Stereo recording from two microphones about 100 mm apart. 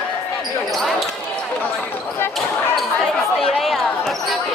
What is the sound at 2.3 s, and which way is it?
Basketball bounce, centre (ahead or behind).